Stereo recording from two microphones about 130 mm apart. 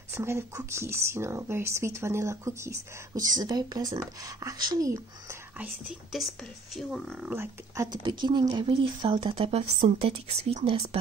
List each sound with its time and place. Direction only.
0.1 s speech: 20° right (ahead or behind)
6.1 s speech: centre (ahead or behind)
7.3 s speech: 25° right (ahead or behind)
8.0 s speech: 35° right (ahead or behind)